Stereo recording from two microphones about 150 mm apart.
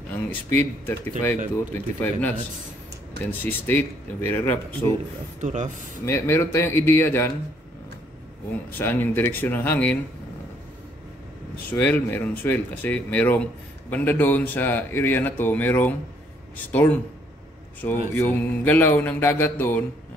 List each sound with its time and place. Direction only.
0.1 s speech: 10° left (ahead or behind)
5.4 s speech: 50° right (ahead or behind)
6.0 s speech: 15° left (ahead or behind)
8.7 s speech: 15° left (ahead or behind)
11.7 s speech: 10° left (ahead or behind)
18.1 s speech: 15° left (ahead or behind)